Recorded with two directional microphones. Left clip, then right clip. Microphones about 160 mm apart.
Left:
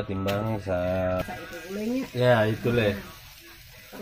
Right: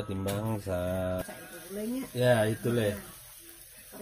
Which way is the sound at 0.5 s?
45° right (ahead or behind).